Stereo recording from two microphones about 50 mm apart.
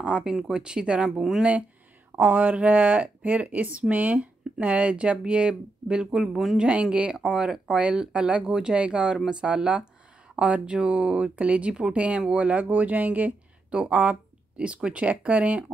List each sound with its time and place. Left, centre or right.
0.2 s speech: centre
2.2 s speech: right